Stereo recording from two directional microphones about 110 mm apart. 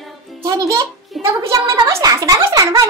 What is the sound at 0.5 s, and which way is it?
A child's voice, 30° right (ahead or behind).